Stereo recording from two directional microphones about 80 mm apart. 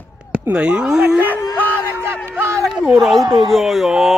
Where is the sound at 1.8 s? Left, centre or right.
Right.